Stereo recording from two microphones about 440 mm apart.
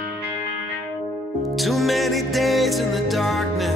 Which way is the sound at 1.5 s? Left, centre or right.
Centre.